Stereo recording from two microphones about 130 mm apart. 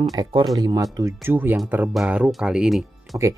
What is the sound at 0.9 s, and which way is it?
Speech, 20° right (ahead or behind).